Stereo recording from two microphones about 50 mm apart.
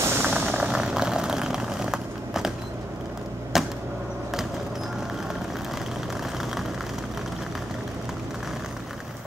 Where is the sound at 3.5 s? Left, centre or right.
Centre.